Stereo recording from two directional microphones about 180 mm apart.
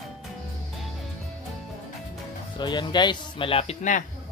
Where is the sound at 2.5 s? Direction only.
25° left (ahead or behind).